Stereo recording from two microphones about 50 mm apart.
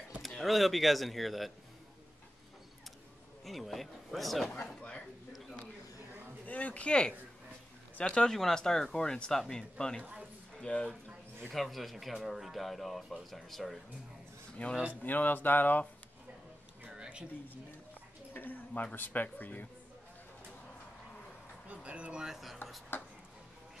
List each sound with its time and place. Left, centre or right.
0.2 s speech: centre
3.4 s speech: centre
4.6 s speech: centre
6.4 s a man's voice: left
11.5 s speech: centre
14.6 s a man's voice: left
15.0 s speech: left
16.9 s a sound: centre
18.3 s a sound: left
18.7 s a man's voice: left
18.9 s speech: left
21.6 s speech: right
22.2 s speech: centre
22.9 s speech: left